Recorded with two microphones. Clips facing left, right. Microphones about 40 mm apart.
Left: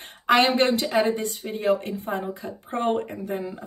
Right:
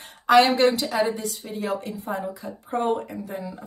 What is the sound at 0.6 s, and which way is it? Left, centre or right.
Speech, left.